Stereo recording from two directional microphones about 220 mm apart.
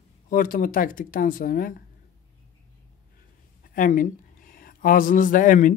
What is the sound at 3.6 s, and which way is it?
Speech, 40° left (ahead or behind).